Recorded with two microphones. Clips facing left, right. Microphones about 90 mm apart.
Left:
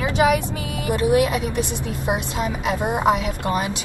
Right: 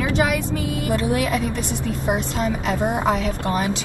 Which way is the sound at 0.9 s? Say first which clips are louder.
Left 4 dB; 15° left (ahead or behind).